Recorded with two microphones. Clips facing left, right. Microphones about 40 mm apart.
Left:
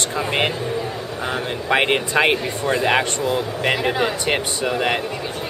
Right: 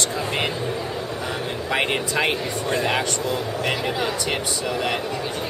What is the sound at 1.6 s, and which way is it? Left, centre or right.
Speech, left.